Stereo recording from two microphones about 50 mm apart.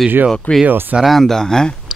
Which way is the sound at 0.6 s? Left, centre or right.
Right.